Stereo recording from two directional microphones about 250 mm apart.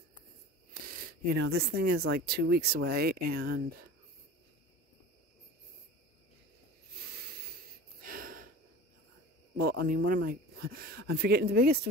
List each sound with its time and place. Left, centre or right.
1.4 s speech: right
8.0 s a sound: right
9.6 s speech: right